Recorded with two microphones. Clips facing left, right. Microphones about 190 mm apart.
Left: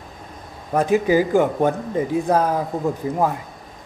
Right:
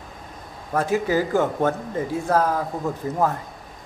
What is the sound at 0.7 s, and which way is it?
Speech, 15° left (ahead or behind).